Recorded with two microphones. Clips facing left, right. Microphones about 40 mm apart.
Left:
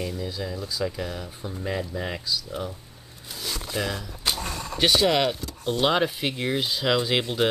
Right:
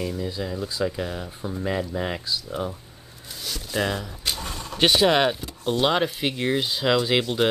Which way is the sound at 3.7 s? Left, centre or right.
Centre.